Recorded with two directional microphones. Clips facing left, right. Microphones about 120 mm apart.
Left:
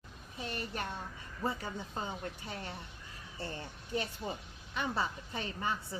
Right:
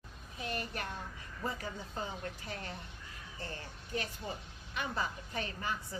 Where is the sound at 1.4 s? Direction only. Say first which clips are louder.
Left 3 dB; 25° left (ahead or behind).